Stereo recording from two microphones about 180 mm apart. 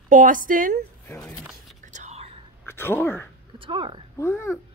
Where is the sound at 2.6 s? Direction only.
10° left (ahead or behind).